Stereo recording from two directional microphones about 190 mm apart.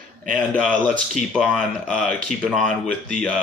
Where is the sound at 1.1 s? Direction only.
Centre (ahead or behind).